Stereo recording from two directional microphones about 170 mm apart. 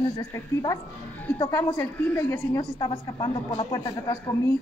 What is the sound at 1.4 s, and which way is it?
A woman's voice, 15° left (ahead or behind).